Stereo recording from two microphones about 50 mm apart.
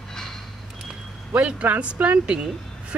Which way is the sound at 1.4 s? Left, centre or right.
Right.